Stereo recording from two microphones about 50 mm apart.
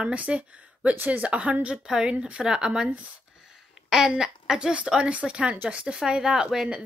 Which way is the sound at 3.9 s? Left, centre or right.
Centre.